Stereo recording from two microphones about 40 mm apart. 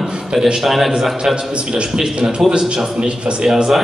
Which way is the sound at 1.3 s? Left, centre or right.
Right.